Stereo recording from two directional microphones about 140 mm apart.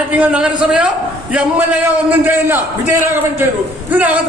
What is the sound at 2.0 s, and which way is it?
A man's voice, 15° right (ahead or behind).